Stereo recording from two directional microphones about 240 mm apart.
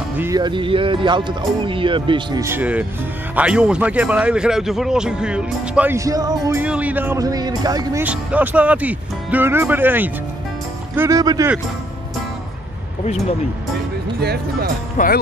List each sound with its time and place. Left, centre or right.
0.2 s a man's voice: centre
14.2 s speech: right
15.0 s speech: left